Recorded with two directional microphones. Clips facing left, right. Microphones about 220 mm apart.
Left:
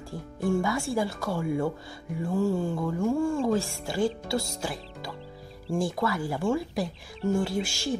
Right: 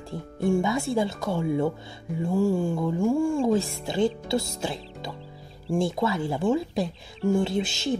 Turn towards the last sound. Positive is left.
turn(degrees=-20)  # may be behind; listen again after turning